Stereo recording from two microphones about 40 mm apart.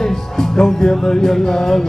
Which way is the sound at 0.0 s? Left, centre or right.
Centre.